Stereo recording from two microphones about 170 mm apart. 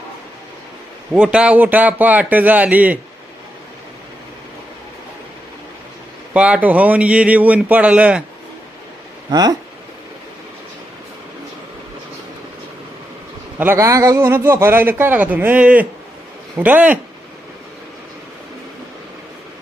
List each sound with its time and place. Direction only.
1.1 s speech: 5° right (ahead or behind)
6.3 s speech: 5° right (ahead or behind)
9.3 s speech: 25° right (ahead or behind)
13.6 s speech: 15° right (ahead or behind)